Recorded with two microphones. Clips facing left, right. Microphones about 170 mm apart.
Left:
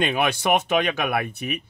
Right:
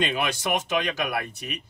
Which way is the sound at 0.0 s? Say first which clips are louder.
Left 4 dB; 60° left (ahead or behind).